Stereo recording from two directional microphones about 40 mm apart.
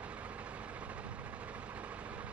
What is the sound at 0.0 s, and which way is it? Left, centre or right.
Vehicle, right.